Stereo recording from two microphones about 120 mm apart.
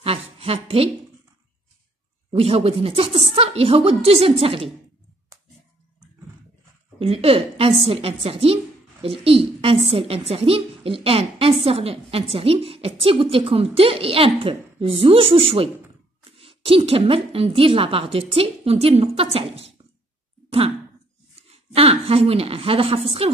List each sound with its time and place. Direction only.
0.0 s a woman's voice: 55° right (ahead or behind)
2.3 s a woman's voice: 55° right (ahead or behind)
7.0 s a woman's voice: 55° right (ahead or behind)
21.4 s speech: 55° right (ahead or behind)